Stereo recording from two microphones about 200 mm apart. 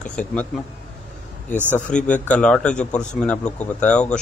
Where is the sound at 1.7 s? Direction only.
5° left (ahead or behind).